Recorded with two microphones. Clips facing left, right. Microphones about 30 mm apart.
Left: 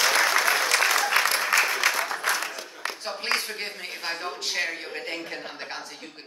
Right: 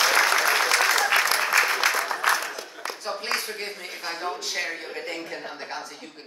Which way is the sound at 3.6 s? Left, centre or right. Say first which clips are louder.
Even; centre.